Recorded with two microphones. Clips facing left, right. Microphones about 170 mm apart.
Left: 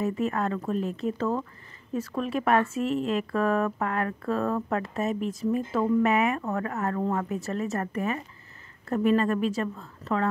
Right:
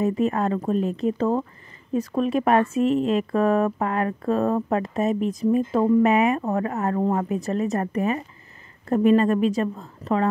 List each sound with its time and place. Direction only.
0.0 s speech: 20° right (ahead or behind)